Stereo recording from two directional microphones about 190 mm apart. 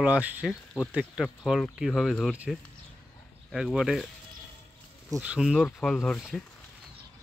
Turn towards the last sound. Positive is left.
turn(degrees=0)  # may be behind; listen again after turning